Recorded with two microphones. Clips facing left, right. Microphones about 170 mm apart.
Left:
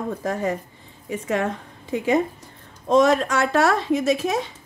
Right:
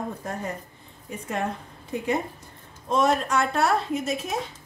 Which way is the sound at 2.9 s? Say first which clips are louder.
Left 5 dB; 90° left.